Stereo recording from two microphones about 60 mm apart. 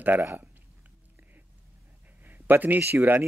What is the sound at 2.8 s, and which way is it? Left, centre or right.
Speech, right.